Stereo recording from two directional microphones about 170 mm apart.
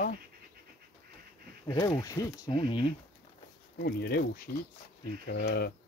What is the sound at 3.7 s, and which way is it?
Speech, 65° left (ahead or behind).